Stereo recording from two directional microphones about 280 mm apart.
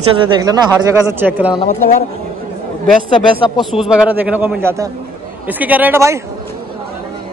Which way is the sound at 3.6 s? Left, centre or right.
Centre.